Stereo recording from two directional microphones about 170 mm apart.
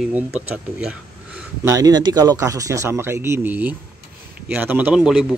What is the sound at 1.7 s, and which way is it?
Speech, 25° right (ahead or behind).